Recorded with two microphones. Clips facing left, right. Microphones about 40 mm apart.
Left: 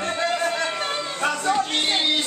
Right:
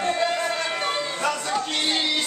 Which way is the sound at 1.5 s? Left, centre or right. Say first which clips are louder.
Left 2 dB; left.